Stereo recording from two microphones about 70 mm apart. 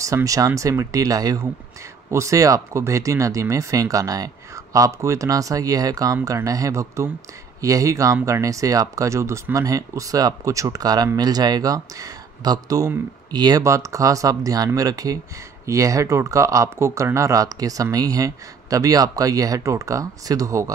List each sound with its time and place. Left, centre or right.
0.0 s speech: right
2.0 s speech: right
13.6 s speech: right